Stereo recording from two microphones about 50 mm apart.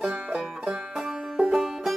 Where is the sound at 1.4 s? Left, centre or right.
Centre.